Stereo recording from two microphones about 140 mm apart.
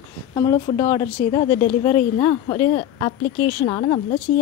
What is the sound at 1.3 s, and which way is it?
Speech, 40° left (ahead or behind).